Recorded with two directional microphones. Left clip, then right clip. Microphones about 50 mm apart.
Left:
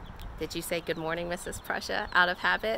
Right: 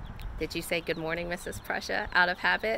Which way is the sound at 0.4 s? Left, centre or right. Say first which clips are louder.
Right 2 dB; left.